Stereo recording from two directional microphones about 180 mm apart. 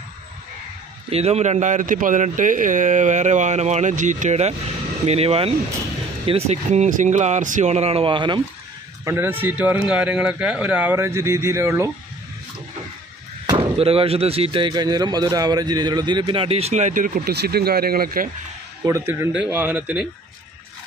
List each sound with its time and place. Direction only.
1.1 s a man's voice: 35° right (ahead or behind)
9.0 s a man's voice: 10° right (ahead or behind)
13.5 s speech: 30° right (ahead or behind); by 18.3 s 55° right (ahead or behind)
18.9 s a man's voice: 15° right (ahead or behind)